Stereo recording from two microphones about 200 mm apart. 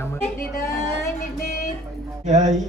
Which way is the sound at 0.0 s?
10° left (ahead or behind).